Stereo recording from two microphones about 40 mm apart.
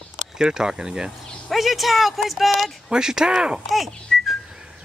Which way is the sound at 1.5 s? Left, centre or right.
Centre.